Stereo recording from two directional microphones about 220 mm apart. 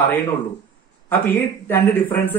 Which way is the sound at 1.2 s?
10° left (ahead or behind).